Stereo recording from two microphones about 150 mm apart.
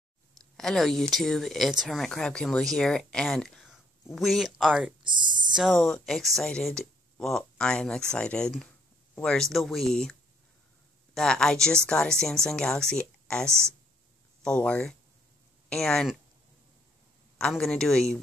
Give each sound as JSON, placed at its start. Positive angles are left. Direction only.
{"t": 0.4, "sound": "a sound", "side_deg": 5}
{"t": 1.1, "sound": "speech", "side_deg": 0}
{"t": 5.0, "sound": "speech", "side_deg": -30}
{"t": 5.5, "sound": "speech", "side_deg": 0}
{"t": 11.1, "sound": "speech", "side_deg": 5}
{"t": 17.4, "sound": "speech", "side_deg": 5}